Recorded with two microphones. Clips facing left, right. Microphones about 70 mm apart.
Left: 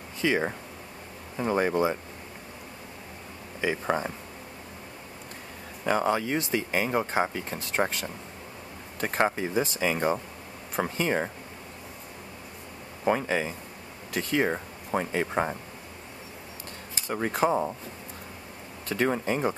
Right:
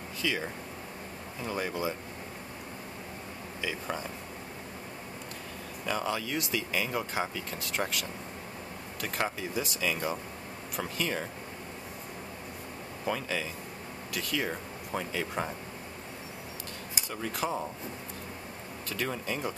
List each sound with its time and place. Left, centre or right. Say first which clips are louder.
0.2 s speech: left 7 dB; left
3.6 s speech: left 8 dB; left
5.9 s speech: left 7 dB; left
13.0 s speech: left 7 dB; left
17.1 s speech: left 8 dB; left
18.9 s speech: left 8 dB; left